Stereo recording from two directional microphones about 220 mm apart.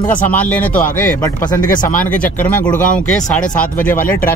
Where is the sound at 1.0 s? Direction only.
35° left (ahead or behind).